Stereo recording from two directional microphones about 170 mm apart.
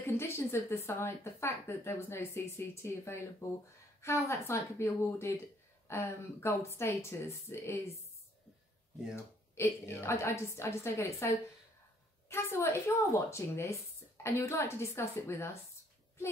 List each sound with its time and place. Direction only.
0.0 s speech: 15° left (ahead or behind)
9.1 s speech: 15° left (ahead or behind)